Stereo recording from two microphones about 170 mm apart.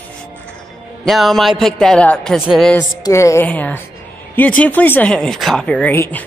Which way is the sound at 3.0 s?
15° left (ahead or behind).